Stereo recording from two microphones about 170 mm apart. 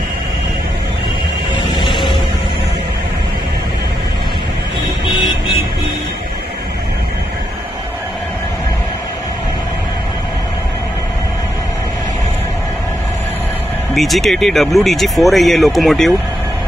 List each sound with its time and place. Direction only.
13.9 s speech: centre (ahead or behind)